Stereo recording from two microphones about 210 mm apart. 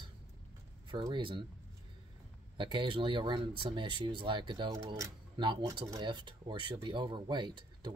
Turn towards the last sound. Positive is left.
turn(degrees=-20)  # may be behind; listen again after turning